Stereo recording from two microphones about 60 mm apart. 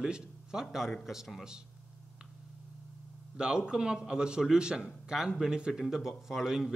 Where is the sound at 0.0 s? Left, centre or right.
Centre.